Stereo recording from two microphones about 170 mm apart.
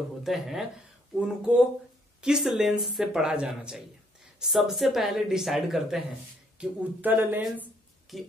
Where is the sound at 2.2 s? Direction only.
5° right (ahead or behind).